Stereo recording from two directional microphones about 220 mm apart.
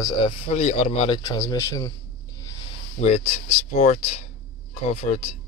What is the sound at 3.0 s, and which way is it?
Speech, 30° left (ahead or behind).